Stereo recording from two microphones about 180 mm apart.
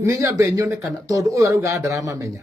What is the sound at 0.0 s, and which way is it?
A man's voice, 15° right (ahead or behind).